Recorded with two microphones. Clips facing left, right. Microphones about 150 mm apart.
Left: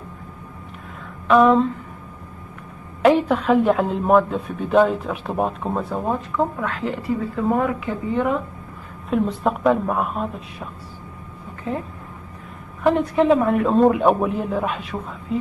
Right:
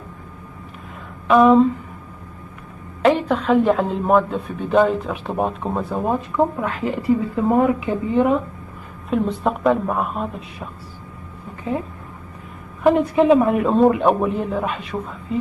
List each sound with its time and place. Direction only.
1.2 s speech: 5° right (ahead or behind)
3.0 s a woman's voice: 5° left (ahead or behind)
6.0 s a woman's voice: 10° right (ahead or behind)
9.1 s a woman's voice: centre (ahead or behind)
12.8 s a woman's voice: 5° right (ahead or behind)